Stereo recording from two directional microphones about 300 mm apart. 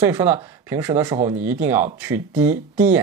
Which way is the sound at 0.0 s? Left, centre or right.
Centre.